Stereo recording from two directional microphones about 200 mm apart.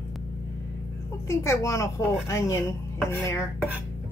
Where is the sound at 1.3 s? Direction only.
15° left (ahead or behind).